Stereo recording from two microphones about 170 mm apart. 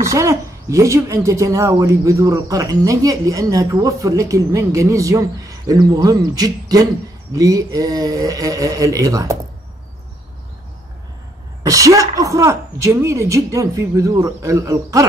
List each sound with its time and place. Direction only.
0.0 s speech: 15° right (ahead or behind)
11.6 s speech: 20° right (ahead or behind)